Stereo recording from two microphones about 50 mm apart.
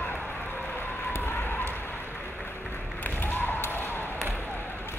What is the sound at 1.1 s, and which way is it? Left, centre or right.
Fire, left.